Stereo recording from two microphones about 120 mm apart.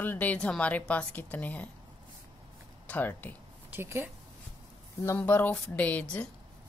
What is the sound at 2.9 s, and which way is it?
Speech, 15° left (ahead or behind).